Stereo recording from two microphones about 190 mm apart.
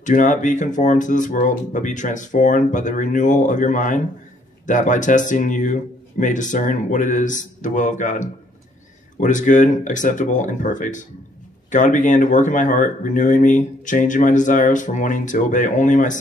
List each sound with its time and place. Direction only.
0.0 s speech: 40° left (ahead or behind)